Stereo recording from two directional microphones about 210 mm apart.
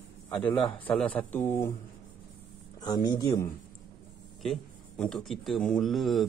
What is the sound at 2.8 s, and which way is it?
Speech, 20° left (ahead or behind).